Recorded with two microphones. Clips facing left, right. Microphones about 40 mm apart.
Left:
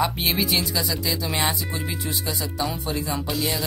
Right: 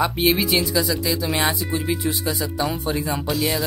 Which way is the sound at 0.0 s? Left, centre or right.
Centre.